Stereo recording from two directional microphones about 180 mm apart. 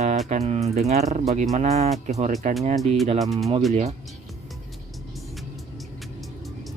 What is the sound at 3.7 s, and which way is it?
Speech, 35° right (ahead or behind).